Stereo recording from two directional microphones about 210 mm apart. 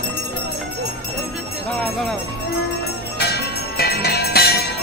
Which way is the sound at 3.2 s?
50° left (ahead or behind).